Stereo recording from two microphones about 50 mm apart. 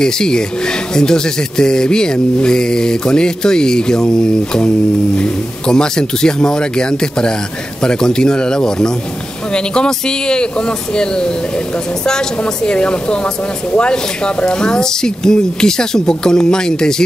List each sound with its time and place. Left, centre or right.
0.0 s speech: centre